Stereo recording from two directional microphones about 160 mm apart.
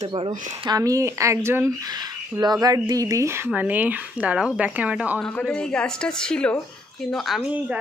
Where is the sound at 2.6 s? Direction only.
20° right (ahead or behind).